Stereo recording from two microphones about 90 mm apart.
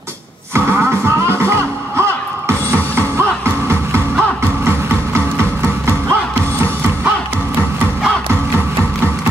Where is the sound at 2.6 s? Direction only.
20° left (ahead or behind).